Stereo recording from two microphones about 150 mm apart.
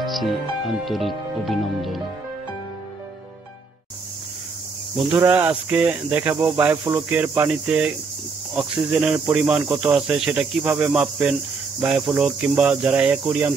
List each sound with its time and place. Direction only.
0.0 s speech: centre (ahead or behind)
5.1 s speech: 10° right (ahead or behind)